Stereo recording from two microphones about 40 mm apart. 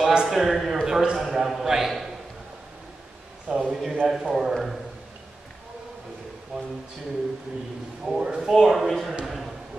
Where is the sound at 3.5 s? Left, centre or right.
Centre.